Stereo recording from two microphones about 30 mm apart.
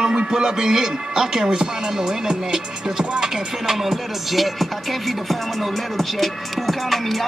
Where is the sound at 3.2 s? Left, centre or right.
Centre.